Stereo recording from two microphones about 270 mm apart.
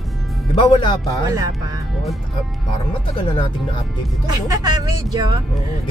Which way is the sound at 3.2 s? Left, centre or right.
Centre.